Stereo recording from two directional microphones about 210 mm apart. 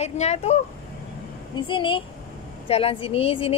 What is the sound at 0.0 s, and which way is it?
Speech, 30° left (ahead or behind).